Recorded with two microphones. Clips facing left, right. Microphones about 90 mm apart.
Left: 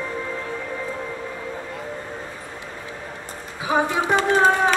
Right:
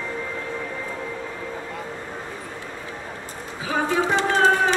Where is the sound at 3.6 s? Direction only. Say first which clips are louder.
Left 1 dB; 15° left (ahead or behind).